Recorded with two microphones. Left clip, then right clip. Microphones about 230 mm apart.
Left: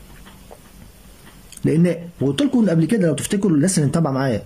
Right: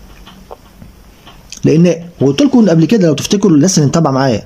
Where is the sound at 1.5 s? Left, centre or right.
Centre.